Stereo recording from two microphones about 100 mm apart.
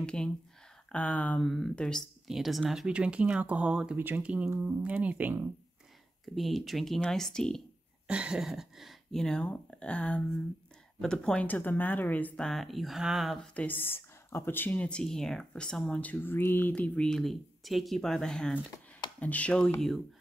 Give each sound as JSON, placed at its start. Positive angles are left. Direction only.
{"t": 0.0, "sound": "speech", "side_deg": 10}
{"t": 1.4, "sound": "speech", "side_deg": 5}
{"t": 6.2, "sound": "speech", "side_deg": 0}
{"t": 8.1, "sound": "speech", "side_deg": -10}
{"t": 12.4, "sound": "speech", "side_deg": 0}
{"t": 13.6, "sound": "speech", "side_deg": 20}